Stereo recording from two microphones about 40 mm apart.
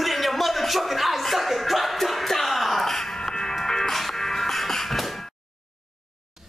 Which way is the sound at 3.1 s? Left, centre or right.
Centre.